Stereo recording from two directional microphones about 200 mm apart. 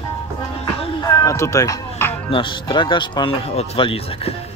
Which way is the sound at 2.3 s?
25° left (ahead or behind).